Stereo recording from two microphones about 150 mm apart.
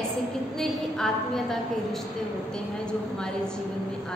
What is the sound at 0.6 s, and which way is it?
A woman's voice, 5° left (ahead or behind).